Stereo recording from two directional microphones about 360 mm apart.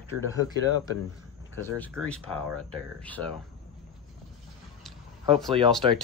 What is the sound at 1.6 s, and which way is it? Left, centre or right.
Speech, centre.